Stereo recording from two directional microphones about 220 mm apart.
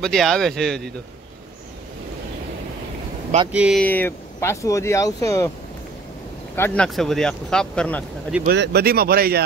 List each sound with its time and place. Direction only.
0.0 s speech: centre (ahead or behind)
3.5 s speech: 5° right (ahead or behind)
3.8 s speech: 10° left (ahead or behind)
6.5 s speech: 10° left (ahead or behind)
8.5 s speech: 45° right (ahead or behind)